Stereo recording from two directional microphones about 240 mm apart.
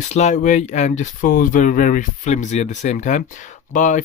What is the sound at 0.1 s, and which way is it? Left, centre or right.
Speech, left.